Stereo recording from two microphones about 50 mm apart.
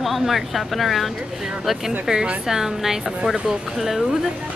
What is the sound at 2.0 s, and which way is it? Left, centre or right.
Speech, centre.